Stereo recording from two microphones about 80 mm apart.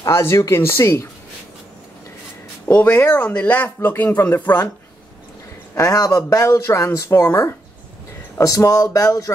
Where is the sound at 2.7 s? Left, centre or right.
Centre.